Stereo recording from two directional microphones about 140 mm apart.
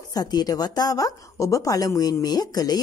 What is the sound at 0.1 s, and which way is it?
A woman's voice, 30° left (ahead or behind).